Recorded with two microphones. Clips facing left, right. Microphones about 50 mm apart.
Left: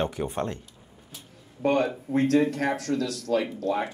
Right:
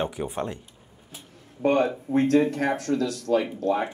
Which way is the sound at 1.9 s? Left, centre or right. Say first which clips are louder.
Right 2 dB; centre.